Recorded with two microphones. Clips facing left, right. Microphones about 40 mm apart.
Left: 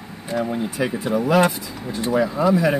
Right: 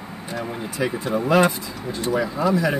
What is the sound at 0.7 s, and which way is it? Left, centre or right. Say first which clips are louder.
Speech: even; centre.